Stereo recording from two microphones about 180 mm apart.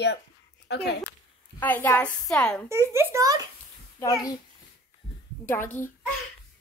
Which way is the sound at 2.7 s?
15° right (ahead or behind).